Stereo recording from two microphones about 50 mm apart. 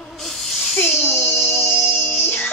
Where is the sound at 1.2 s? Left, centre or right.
Left.